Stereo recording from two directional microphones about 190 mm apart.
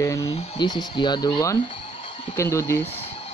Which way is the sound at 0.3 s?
35° left (ahead or behind).